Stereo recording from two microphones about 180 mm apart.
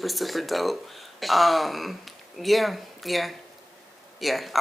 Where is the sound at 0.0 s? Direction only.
Centre (ahead or behind).